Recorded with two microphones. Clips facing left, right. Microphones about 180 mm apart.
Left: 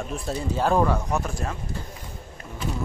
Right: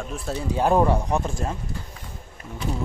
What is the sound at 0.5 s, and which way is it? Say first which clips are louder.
Speech: right 2 dB; 20° right (ahead or behind).